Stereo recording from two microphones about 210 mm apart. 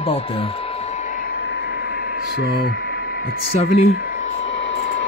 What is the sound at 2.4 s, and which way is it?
Speech, 50° left (ahead or behind).